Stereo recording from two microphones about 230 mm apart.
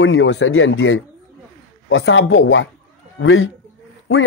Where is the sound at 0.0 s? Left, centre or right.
Left.